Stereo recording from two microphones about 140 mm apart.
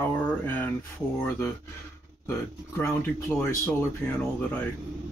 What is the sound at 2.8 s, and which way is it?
Speech, 20° left (ahead or behind).